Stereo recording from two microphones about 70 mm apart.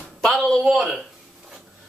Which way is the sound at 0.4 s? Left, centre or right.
Centre.